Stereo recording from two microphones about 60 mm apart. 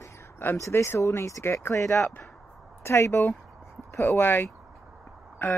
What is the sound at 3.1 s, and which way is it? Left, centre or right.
Speech, left.